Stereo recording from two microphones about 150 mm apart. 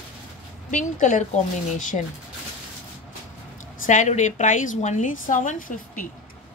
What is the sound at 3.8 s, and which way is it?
Speech, 55° left (ahead or behind).